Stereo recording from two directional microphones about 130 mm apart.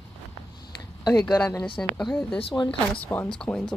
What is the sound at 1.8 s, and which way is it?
Speech, 5° left (ahead or behind).